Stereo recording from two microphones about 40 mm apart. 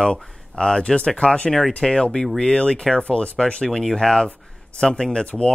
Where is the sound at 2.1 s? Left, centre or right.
Centre.